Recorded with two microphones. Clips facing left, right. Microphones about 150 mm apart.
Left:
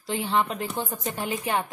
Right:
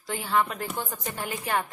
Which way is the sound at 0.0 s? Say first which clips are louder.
Left 1 dB; 25° left (ahead or behind).